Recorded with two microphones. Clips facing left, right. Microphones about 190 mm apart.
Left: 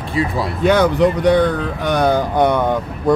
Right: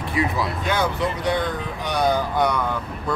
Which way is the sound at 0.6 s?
65° left (ahead or behind).